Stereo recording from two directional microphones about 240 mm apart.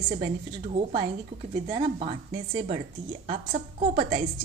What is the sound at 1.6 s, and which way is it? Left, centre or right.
A woman's voice, right.